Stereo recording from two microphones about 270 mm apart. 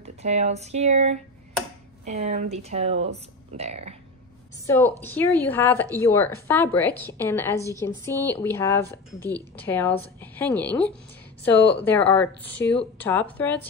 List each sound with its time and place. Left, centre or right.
0.0 s speech: right
4.6 s speech: centre